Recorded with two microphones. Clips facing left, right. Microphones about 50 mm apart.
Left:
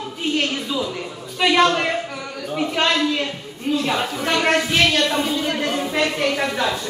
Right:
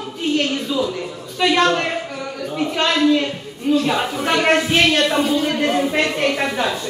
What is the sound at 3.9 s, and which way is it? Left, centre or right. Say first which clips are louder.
Speech: right 2 dB; centre.